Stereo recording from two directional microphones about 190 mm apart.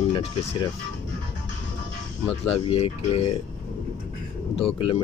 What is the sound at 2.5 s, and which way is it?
Speech, 30° left (ahead or behind).